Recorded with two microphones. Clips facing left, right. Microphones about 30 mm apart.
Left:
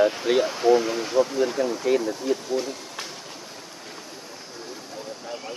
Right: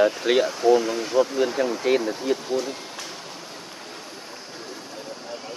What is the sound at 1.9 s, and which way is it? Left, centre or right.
Speech, right.